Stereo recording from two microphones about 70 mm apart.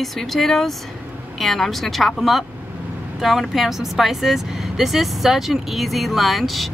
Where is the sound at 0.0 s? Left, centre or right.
Centre.